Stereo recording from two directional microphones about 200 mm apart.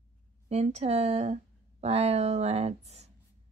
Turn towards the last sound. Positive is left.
turn(degrees=-30)  # may be behind; listen again after turning